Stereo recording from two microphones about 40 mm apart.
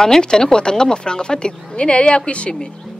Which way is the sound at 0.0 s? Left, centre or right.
Centre.